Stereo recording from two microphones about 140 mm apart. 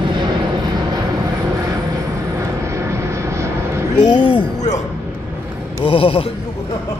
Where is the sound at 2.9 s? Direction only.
20° right (ahead or behind).